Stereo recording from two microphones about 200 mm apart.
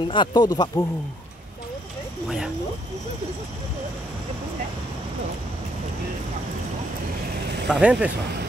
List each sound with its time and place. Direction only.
0.0 s speech: 25° left (ahead or behind)
2.2 s speech: 5° right (ahead or behind)
7.6 s speech: 5° right (ahead or behind)